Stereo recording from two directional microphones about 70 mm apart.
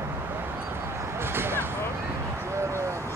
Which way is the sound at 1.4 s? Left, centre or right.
Right.